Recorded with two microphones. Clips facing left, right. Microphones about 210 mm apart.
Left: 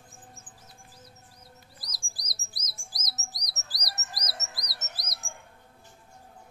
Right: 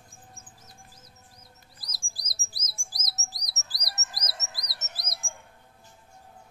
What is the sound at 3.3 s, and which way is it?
Chirp, 25° right (ahead or behind).